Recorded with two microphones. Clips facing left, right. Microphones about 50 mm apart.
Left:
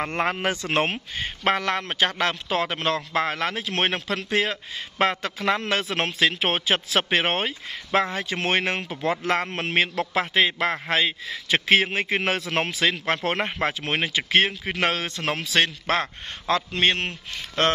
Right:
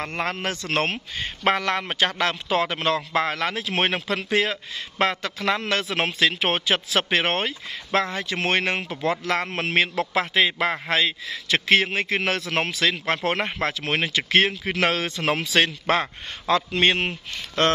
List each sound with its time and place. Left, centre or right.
0.1 s a man's voice: centre